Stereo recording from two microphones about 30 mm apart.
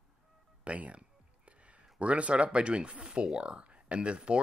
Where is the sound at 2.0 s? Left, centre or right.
Right.